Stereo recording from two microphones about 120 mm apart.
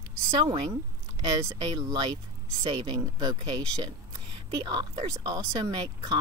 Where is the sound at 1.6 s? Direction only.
35° right (ahead or behind).